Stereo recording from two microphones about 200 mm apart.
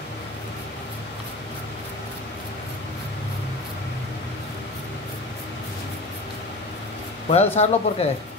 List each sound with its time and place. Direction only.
7.2 s speech: 30° left (ahead or behind)